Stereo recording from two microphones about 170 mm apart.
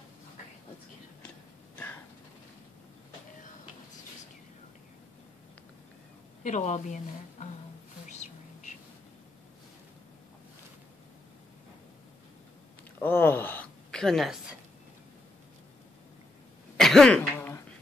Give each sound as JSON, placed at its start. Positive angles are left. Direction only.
{"t": 6.4, "sound": "a woman's voice", "side_deg": 45}
{"t": 8.1, "sound": "bird", "side_deg": 40}
{"t": 13.0, "sound": "a sound", "side_deg": 10}
{"t": 16.7, "sound": "cough", "side_deg": 0}